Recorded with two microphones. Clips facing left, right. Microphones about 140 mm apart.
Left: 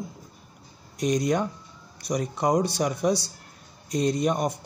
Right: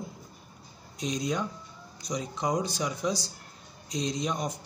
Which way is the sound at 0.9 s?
65° left (ahead or behind).